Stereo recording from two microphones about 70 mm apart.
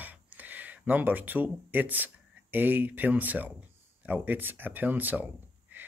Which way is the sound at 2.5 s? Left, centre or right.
Right.